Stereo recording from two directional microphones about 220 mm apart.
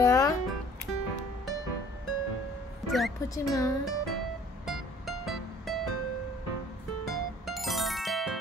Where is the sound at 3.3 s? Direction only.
15° left (ahead or behind).